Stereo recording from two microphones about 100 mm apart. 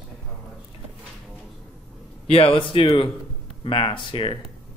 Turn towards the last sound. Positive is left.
turn(degrees=55)  # may be behind; listen again after turning